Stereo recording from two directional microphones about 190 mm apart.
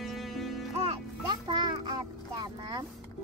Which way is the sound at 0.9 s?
25° right (ahead or behind).